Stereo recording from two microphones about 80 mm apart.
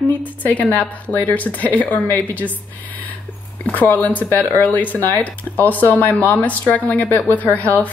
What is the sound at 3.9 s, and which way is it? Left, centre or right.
Speech, left.